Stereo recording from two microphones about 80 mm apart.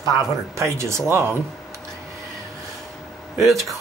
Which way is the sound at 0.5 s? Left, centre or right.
Right.